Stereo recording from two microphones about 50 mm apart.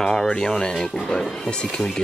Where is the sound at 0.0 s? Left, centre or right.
Centre.